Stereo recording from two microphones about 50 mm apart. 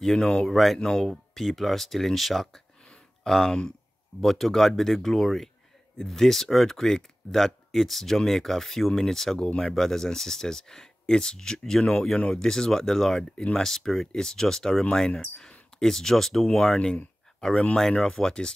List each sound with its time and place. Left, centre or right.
0.0 s speech: centre
0.7 s speech: centre
1.0 s speech: centre